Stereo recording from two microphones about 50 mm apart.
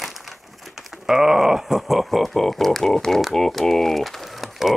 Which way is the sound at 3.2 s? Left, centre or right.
Centre.